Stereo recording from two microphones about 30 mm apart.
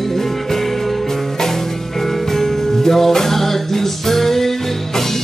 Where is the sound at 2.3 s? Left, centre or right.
Centre.